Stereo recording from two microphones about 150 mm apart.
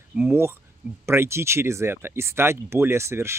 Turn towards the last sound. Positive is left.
turn(degrees=-15)  # may be behind; listen again after turning